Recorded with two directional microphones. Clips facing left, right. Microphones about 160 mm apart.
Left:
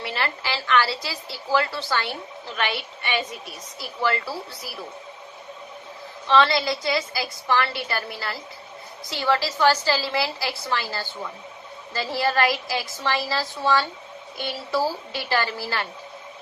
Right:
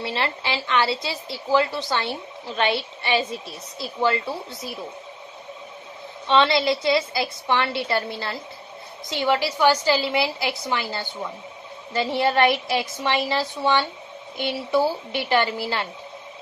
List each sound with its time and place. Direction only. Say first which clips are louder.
0.0 s a woman's voice: right 2 dB; 25° right (ahead or behind)
6.2 s a woman's voice: right 1 dB; 20° right (ahead or behind)